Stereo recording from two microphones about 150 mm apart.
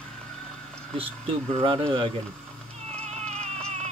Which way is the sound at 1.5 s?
40° right (ahead or behind).